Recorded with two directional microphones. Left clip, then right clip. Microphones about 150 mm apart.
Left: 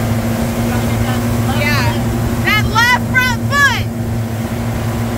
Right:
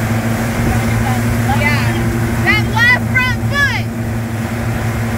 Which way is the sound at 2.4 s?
35° left (ahead or behind).